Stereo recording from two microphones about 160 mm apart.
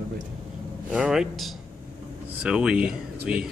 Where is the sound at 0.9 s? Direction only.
5° right (ahead or behind).